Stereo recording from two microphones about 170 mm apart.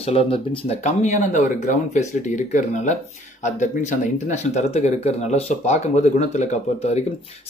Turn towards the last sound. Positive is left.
turn(degrees=40)  # may be behind; listen again after turning